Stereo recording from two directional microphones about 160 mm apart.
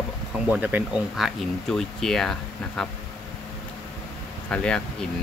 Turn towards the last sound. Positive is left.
turn(degrees=5)  # may be behind; listen again after turning